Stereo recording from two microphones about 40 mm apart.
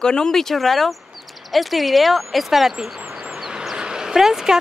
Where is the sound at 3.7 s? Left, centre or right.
Centre.